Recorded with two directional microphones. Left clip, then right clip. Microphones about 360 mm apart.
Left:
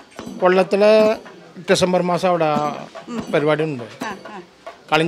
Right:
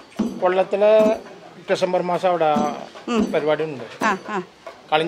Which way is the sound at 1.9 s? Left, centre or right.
Left.